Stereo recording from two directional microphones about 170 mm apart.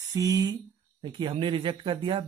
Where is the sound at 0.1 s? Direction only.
20° right (ahead or behind).